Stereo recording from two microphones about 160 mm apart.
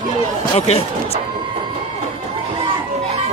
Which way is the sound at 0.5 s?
40° left (ahead or behind).